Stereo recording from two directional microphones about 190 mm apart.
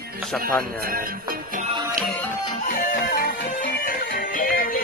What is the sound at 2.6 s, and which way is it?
Music, 50° left (ahead or behind).